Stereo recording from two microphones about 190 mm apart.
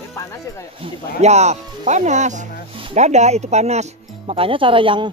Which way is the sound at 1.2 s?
35° right (ahead or behind).